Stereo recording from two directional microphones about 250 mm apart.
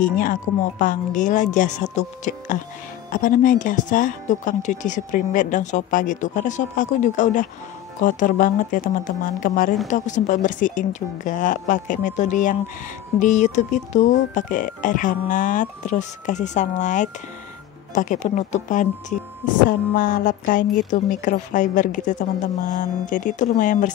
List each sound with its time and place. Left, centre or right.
0.0 s speech: left